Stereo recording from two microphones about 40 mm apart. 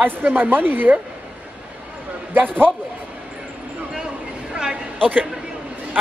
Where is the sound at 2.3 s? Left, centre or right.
Right.